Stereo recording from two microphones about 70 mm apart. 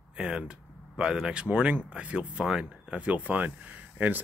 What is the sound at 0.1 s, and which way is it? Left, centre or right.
Speech, centre.